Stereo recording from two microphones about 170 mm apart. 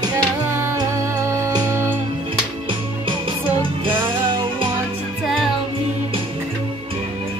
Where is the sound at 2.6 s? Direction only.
30° right (ahead or behind).